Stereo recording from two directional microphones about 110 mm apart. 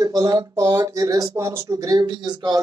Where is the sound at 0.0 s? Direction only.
35° right (ahead or behind).